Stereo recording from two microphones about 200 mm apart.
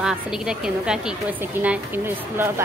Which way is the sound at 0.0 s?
5° right (ahead or behind).